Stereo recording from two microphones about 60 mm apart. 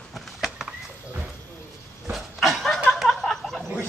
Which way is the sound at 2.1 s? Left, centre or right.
Centre.